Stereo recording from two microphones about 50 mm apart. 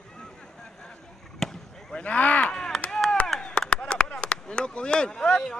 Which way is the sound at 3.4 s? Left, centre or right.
Left.